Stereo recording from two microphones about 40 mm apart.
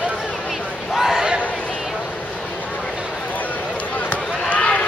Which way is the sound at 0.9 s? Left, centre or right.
Centre.